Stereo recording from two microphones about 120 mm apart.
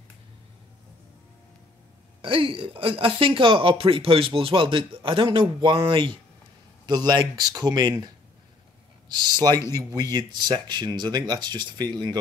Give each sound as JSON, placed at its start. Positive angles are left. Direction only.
{"t": 2.2, "sound": "speech", "side_deg": -50}
{"t": 9.1, "sound": "speech", "side_deg": -35}